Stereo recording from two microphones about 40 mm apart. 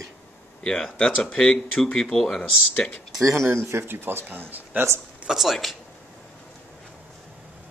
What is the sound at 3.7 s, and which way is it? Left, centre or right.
Speech, right.